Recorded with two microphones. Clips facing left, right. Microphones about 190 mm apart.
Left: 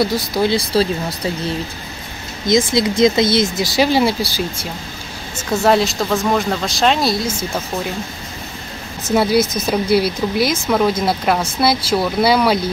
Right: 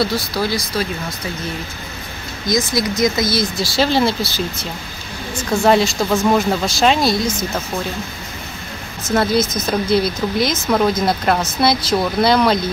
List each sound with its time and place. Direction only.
0.0 s speech: 15° left (ahead or behind)
0.6 s speech: 30° left (ahead or behind)
2.4 s speech: 25° left (ahead or behind)
5.4 s speech: 5° left (ahead or behind)
9.1 s speech: 10° left (ahead or behind)